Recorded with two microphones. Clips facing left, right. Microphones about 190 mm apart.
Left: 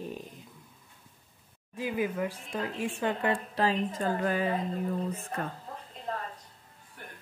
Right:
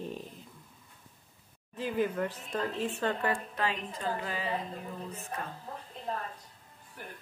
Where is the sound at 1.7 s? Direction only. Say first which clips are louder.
Even; 10° left (ahead or behind).